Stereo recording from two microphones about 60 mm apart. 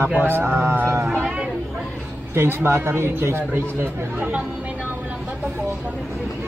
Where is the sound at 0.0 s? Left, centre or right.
Right.